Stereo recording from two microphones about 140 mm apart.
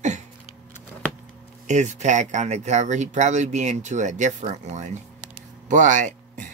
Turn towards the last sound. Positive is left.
turn(degrees=-65)  # may be behind; listen again after turning